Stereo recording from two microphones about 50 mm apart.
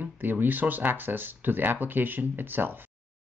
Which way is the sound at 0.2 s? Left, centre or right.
Right.